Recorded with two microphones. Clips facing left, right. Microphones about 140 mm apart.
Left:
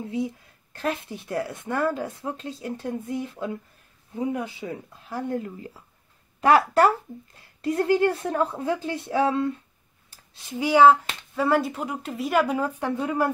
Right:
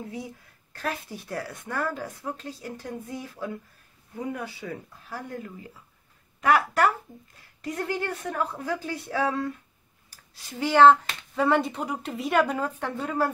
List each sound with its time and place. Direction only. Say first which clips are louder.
0.0 s speech: left 8 dB; 25° left (ahead or behind)
6.4 s speech: left 4 dB; 30° left (ahead or behind)
10.0 s a sound: left 4 dB; 25° left (ahead or behind)
10.6 s speech: left 1 dB; 10° left (ahead or behind)